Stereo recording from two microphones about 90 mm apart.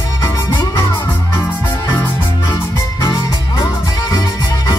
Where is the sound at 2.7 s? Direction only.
45° left (ahead or behind).